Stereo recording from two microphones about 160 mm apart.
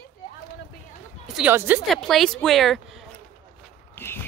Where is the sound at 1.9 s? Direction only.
Centre (ahead or behind).